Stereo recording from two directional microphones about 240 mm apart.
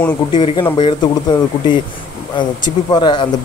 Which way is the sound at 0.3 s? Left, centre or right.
Centre.